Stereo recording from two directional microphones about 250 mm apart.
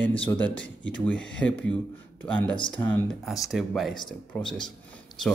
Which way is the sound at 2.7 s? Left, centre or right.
Centre.